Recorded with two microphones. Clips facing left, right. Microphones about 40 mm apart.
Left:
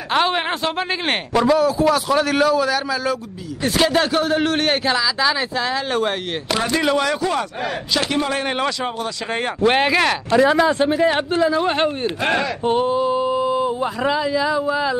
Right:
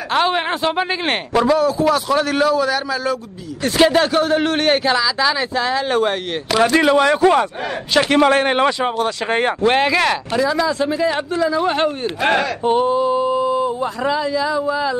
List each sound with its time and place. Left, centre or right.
0.1 s speech: centre
6.8 s speech: centre
7.2 s speech: right
8.1 s speech: right
8.5 s speech: right
9.6 s speech: centre
10.3 s speech: left
11.5 s speech: centre
12.2 s speech: centre
12.6 s speech: centre